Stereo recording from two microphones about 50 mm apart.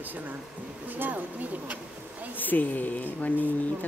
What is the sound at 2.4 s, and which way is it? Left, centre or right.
Speech, left.